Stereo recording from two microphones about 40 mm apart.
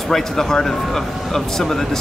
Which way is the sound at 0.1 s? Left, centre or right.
Centre.